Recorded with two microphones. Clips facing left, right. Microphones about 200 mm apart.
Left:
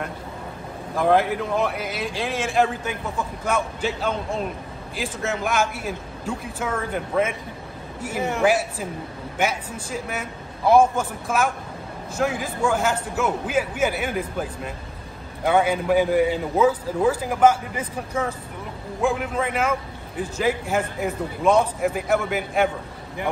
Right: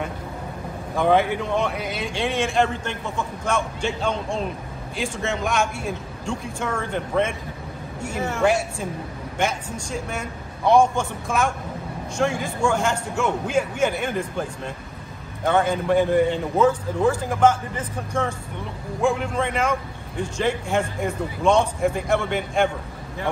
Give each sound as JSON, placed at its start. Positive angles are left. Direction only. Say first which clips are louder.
{"t": 0.9, "sound": "a man's voice", "louder": "even", "side_deg": 0}
{"t": 8.2, "sound": "a man's voice", "louder": "left 1 dB", "side_deg": 15}
{"t": 8.5, "sound": "a man's voice", "louder": "right 1 dB", "side_deg": 5}